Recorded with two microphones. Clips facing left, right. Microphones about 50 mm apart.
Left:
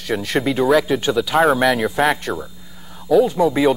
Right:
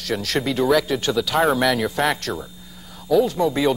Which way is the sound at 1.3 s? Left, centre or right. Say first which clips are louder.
Left 4 dB; centre.